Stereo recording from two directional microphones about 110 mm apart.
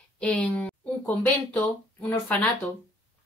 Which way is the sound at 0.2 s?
10° left (ahead or behind).